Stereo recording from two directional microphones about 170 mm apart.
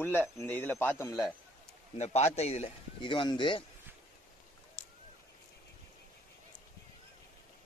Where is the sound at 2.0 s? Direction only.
40° left (ahead or behind).